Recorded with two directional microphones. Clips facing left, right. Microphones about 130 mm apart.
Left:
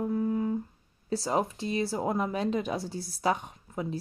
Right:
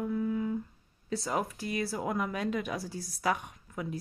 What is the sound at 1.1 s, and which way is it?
Speech, 25° left (ahead or behind).